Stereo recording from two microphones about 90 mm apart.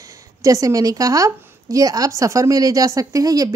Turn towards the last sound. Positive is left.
turn(degrees=-40)  # may be behind; listen again after turning